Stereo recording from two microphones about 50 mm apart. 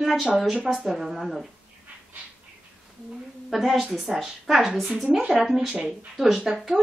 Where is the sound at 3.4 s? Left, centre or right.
Centre.